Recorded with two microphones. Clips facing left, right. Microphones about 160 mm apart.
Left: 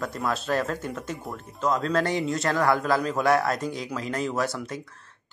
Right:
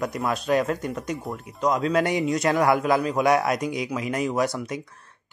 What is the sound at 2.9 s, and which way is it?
A man's voice, 10° right (ahead or behind).